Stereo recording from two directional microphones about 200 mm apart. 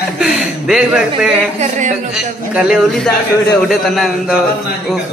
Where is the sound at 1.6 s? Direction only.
35° right (ahead or behind).